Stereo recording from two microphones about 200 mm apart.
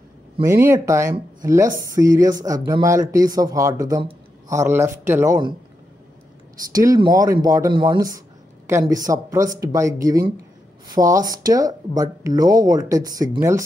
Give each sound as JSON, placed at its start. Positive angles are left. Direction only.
{"t": 0.4, "sound": "speech", "side_deg": -15}
{"t": 6.5, "sound": "speech", "side_deg": -15}